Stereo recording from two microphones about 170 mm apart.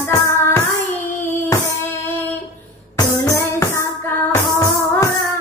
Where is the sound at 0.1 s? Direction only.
15° left (ahead or behind).